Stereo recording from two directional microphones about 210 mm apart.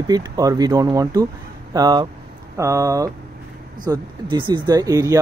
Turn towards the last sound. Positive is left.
turn(degrees=-15)  # may be behind; listen again after turning